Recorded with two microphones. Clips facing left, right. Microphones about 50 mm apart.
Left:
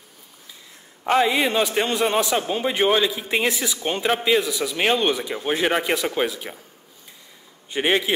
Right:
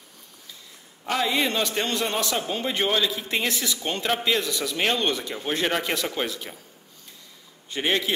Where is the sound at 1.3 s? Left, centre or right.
Centre.